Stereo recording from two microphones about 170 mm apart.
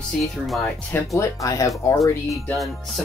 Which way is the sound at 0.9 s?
10° left (ahead or behind).